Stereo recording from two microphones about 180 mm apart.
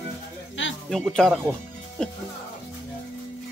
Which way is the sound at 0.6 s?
90° left.